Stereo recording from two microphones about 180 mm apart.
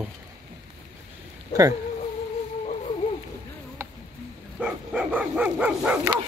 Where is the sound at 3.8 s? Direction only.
15° right (ahead or behind).